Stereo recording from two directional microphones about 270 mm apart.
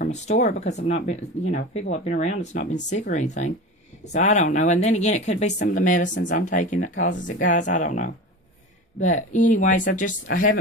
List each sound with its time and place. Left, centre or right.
0.0 s speech: left